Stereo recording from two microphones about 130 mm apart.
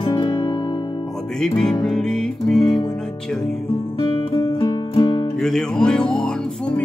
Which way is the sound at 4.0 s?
30° left (ahead or behind).